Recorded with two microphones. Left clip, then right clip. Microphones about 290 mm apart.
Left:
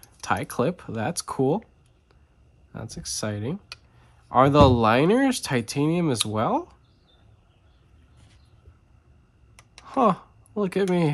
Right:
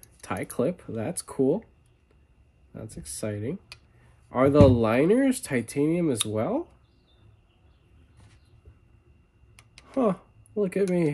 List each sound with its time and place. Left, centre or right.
0.2 s speech: centre
2.7 s speech: centre
9.8 s speech: centre